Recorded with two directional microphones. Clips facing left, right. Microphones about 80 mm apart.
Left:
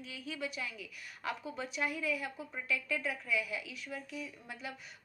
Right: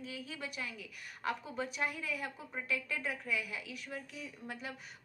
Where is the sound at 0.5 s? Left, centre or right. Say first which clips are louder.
Left 1 dB; right.